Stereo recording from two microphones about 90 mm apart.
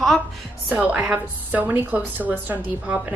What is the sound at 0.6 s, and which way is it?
A woman's voice, 15° right (ahead or behind).